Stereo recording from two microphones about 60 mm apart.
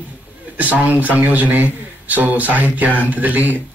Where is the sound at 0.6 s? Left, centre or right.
Right.